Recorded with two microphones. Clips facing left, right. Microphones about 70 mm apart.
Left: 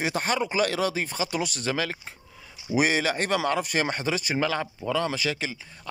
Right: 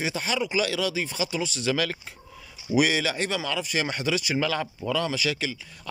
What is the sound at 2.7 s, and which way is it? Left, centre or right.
Speech, left.